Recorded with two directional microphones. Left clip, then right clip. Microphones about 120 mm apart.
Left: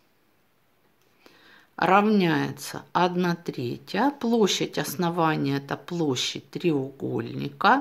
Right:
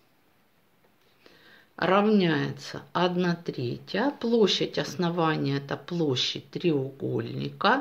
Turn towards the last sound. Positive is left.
turn(degrees=40)  # may be behind; listen again after turning